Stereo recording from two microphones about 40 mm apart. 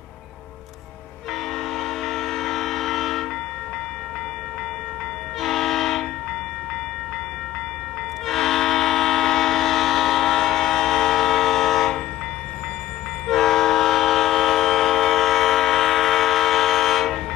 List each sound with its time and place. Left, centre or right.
1.8 s train: centre
5.4 s train: centre
8.3 s train: centre
13.3 s train: centre